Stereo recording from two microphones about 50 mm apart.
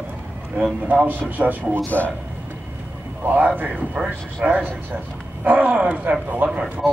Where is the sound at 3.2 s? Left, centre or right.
Right.